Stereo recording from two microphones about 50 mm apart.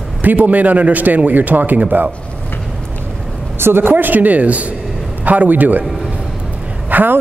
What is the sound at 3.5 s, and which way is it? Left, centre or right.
Speech, right.